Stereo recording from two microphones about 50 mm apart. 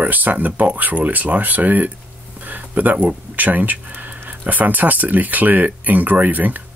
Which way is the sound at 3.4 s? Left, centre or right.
Right.